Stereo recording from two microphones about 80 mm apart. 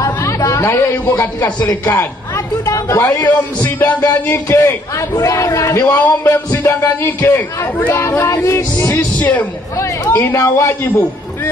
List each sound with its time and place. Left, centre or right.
0.0 s music: left
1.9 s a man's voice: left
3.3 s a man's voice: left
5.9 s speech: left
6.3 s speech: left
8.4 s a man's voice: left
8.9 s a man's voice: left